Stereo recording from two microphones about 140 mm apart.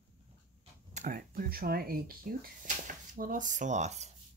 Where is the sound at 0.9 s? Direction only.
90° right.